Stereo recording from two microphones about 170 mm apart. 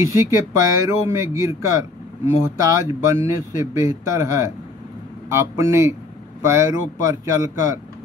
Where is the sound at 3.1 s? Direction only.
15° right (ahead or behind).